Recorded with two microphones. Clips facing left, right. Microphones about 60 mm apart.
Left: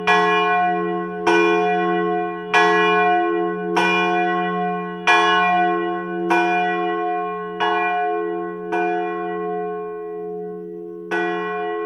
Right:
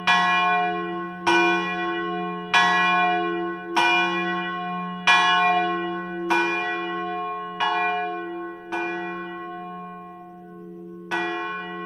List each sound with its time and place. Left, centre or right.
0.0 s church bell: left
5.0 s church bell: left
11.1 s church bell: left